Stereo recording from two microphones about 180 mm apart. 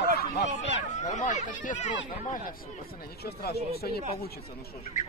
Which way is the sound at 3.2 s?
60° left (ahead or behind).